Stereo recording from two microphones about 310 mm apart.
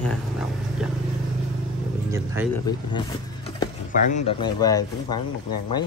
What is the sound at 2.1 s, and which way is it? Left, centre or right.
Speech, centre.